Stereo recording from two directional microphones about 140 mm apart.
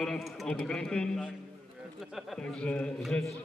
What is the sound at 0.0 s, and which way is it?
A man's voice, centre (ahead or behind).